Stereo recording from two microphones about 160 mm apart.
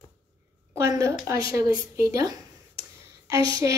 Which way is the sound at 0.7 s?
20° right (ahead or behind).